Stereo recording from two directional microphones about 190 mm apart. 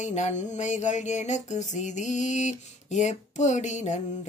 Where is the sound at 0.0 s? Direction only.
40° left (ahead or behind).